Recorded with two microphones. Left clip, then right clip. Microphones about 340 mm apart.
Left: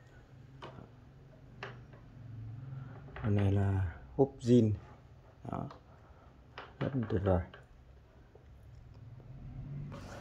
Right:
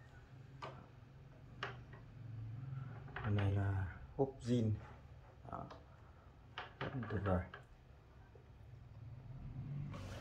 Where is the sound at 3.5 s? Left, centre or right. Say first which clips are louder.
Left 8 dB; left.